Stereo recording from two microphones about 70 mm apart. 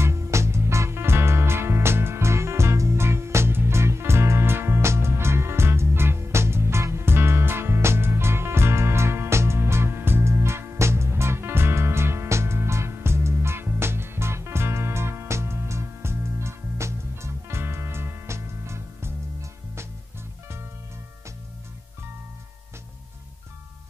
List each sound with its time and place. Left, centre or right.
0.0 s music: right